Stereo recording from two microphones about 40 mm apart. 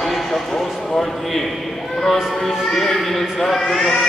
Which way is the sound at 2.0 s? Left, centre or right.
Centre.